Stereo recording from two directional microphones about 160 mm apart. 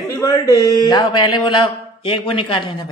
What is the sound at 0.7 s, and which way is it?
A man's voice, 25° left (ahead or behind).